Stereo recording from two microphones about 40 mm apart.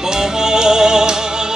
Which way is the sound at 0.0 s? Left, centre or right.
Centre.